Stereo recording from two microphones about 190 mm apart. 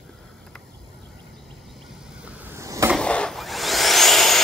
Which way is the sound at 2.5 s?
15° right (ahead or behind).